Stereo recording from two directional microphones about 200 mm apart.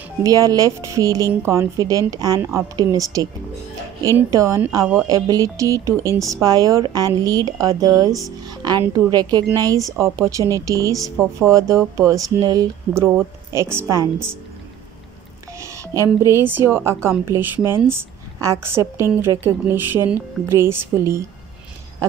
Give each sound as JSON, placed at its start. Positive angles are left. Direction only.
{"t": 0.2, "sound": "speech", "side_deg": -15}
{"t": 4.3, "sound": "speech", "side_deg": -15}
{"t": 5.0, "sound": "speech", "side_deg": -20}
{"t": 15.6, "sound": "speech", "side_deg": -15}